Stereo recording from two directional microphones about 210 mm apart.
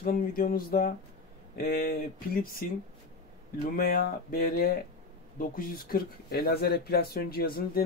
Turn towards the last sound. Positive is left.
turn(degrees=45)  # may be behind; listen again after turning